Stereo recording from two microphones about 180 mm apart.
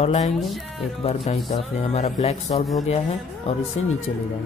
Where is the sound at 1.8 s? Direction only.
35° left (ahead or behind).